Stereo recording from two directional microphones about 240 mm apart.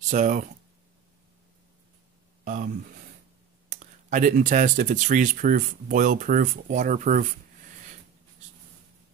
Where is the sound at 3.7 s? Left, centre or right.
Right.